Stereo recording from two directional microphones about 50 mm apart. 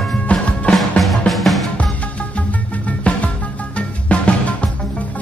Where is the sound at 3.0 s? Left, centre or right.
Left.